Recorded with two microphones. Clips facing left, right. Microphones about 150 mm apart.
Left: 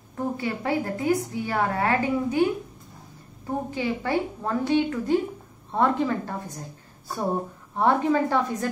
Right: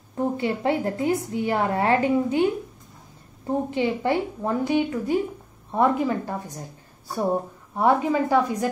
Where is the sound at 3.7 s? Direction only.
15° right (ahead or behind).